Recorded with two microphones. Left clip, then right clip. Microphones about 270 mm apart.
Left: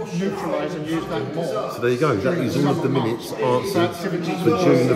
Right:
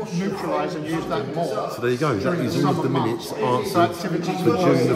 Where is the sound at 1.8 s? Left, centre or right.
Centre.